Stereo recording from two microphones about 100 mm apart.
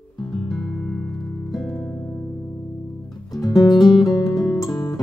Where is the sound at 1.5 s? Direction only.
Centre (ahead or behind).